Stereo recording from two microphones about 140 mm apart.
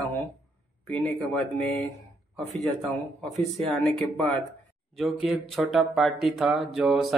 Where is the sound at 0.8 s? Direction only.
15° left (ahead or behind).